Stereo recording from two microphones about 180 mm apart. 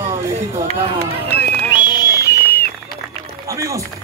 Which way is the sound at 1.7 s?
25° left (ahead or behind).